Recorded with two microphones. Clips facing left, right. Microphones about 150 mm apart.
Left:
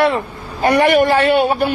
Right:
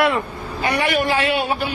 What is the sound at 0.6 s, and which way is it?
A man's voice, 55° left (ahead or behind).